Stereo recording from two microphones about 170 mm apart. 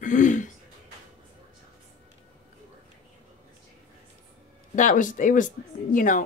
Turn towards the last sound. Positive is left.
turn(degrees=50)  # may be behind; listen again after turning